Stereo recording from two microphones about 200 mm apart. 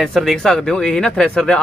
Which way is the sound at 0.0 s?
Centre (ahead or behind).